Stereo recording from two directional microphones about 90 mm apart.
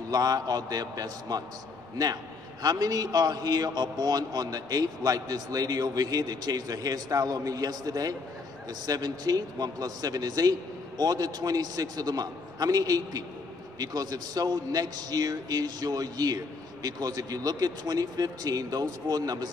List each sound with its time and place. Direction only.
0.1 s a man's voice: 45° right (ahead or behind)
2.6 s a man's voice: 45° right (ahead or behind)